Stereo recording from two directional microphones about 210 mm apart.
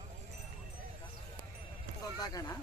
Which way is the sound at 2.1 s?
20° left (ahead or behind).